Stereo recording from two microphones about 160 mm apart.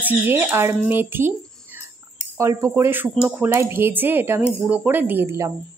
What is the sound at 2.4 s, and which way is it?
Speech, 15° right (ahead or behind).